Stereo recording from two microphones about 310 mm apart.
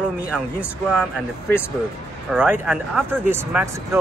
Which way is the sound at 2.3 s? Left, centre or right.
Centre.